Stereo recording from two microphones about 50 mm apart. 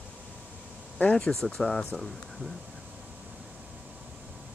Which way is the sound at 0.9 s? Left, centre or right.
Left.